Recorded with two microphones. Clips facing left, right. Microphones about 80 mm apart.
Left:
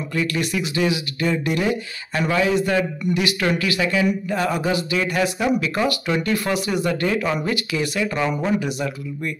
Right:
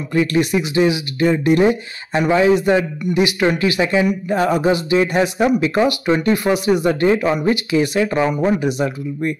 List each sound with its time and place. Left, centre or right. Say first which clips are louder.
0.1 s speech: right 8 dB; right